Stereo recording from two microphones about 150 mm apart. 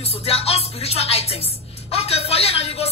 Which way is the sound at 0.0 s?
40° left (ahead or behind).